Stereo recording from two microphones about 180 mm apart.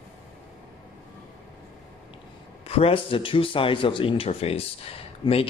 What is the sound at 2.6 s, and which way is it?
Speech, 30° left (ahead or behind).